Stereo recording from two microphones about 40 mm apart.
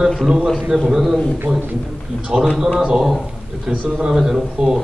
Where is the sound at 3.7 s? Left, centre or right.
Right.